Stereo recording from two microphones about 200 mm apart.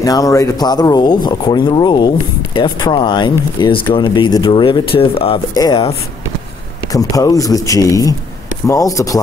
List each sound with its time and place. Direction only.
0.0 s speech: 15° left (ahead or behind)